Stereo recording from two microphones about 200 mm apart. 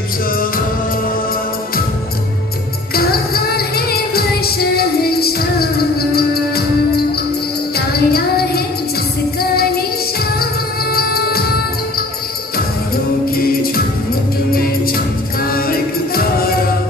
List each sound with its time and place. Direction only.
2.9 s music: 50° left (ahead or behind)
12.5 s music: 50° left (ahead or behind)